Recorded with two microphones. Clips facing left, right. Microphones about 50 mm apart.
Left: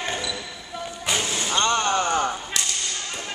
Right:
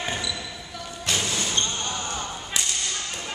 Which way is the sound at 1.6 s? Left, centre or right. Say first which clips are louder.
Left 8 dB; left.